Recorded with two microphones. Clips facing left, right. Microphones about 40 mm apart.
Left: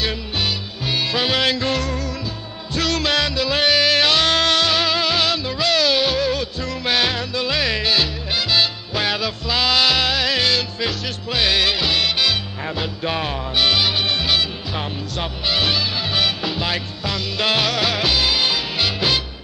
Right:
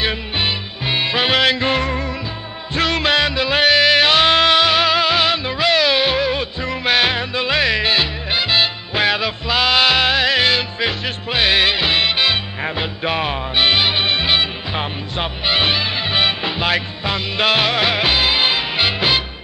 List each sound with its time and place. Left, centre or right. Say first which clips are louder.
0.0 s music: right 3 dB; right